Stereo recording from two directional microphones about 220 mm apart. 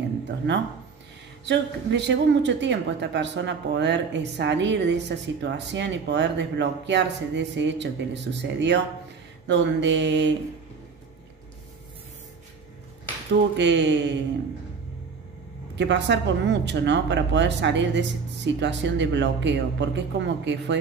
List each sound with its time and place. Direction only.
0.5 s a woman's voice: 55° right (ahead or behind)
13.6 s a woman's voice: 55° right (ahead or behind)
15.7 s a woman's voice: 55° right (ahead or behind)